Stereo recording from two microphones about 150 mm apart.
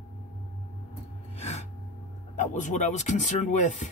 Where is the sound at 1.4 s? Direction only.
45° left (ahead or behind).